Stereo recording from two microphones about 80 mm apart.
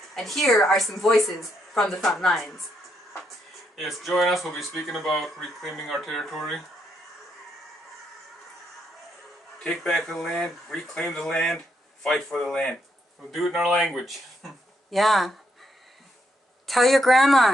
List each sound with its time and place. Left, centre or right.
0.1 s speech: centre
3.7 s speech: centre
9.6 s speech: centre
16.6 s speech: centre